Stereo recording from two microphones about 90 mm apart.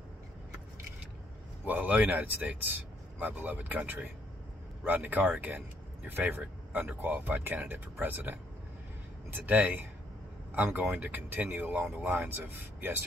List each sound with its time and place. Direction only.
1.7 s speech: 15° right (ahead or behind)
9.5 s speech: 20° right (ahead or behind)